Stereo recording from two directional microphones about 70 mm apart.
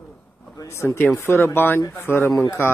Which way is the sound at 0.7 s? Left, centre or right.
Left.